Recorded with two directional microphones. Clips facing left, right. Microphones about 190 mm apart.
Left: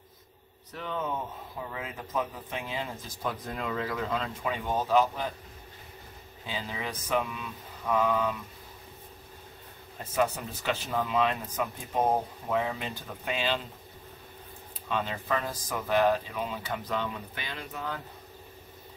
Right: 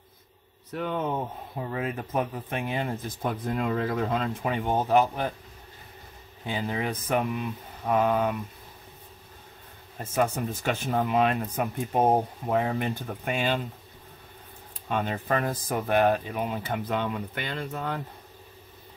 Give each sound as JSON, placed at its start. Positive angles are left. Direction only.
{"t": 0.7, "sound": "speech", "side_deg": -60}
{"t": 6.4, "sound": "speech", "side_deg": -55}
{"t": 10.1, "sound": "speech", "side_deg": -50}
{"t": 14.9, "sound": "speech", "side_deg": -50}